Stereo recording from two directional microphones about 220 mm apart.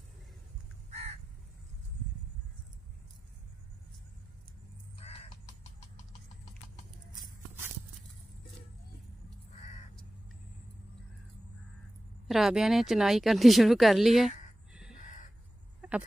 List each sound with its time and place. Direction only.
0.8 s crow: 30° right (ahead or behind)
5.0 s crow: 30° left (ahead or behind)
12.3 s speech: centre (ahead or behind)